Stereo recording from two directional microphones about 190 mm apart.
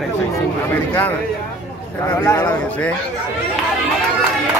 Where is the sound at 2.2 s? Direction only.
20° left (ahead or behind).